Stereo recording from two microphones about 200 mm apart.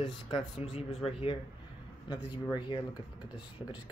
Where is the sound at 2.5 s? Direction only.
20° left (ahead or behind).